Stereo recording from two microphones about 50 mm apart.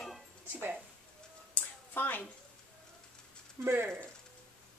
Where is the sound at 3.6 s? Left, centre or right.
Right.